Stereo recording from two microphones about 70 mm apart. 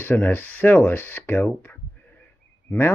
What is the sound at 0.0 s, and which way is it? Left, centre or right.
Speech, left.